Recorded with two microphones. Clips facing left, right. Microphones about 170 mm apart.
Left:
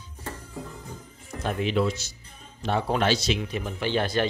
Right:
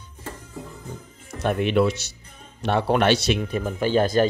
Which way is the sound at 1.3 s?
65° right (ahead or behind).